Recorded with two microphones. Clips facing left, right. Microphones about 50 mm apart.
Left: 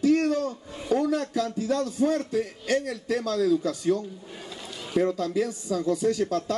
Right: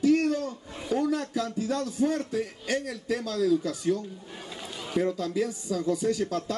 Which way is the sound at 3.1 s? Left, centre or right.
Left.